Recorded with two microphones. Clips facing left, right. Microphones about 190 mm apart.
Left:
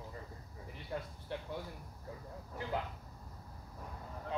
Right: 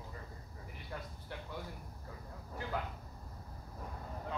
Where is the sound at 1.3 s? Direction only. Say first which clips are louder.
Left 6 dB; 25° left (ahead or behind).